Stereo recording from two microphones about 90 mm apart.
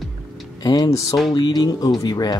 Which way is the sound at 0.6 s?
45° left (ahead or behind).